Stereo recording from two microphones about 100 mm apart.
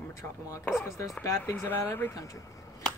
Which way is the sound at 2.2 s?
35° left (ahead or behind).